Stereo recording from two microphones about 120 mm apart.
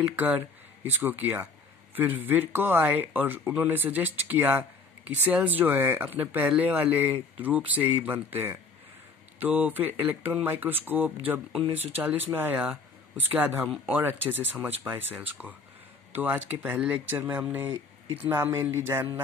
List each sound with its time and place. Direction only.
0.0 s speech: 15° right (ahead or behind)